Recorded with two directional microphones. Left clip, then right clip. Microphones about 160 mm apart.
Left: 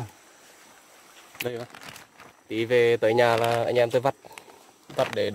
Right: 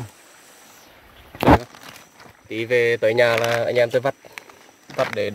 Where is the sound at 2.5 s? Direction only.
15° left (ahead or behind).